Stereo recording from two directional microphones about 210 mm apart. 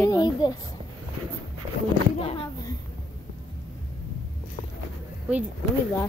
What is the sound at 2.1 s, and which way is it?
Speech, 25° left (ahead or behind).